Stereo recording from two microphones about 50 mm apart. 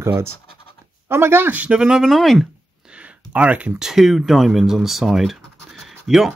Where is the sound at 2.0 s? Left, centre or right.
Centre.